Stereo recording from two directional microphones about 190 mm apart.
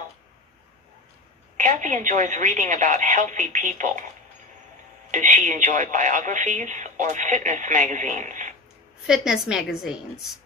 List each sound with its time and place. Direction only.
1.6 s speech: 40° right (ahead or behind)
5.1 s speech: 40° right (ahead or behind)
9.0 s a woman's voice: 5° right (ahead or behind)